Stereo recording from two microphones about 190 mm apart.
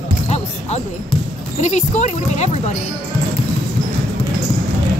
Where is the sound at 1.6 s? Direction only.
40° left (ahead or behind).